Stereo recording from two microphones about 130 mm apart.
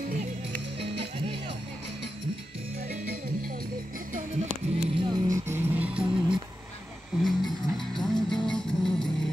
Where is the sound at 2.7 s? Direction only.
90° right.